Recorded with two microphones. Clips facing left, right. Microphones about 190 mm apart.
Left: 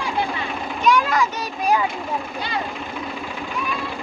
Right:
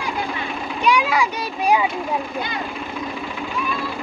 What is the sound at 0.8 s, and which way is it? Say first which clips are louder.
Children playing: even; 10° right (ahead or behind).